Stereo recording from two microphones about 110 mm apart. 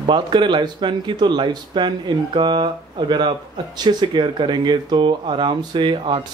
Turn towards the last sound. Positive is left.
turn(degrees=-50)  # may be behind; listen again after turning